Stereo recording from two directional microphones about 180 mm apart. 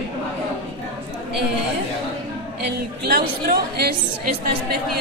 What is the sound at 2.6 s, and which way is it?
Speech, 60° right (ahead or behind).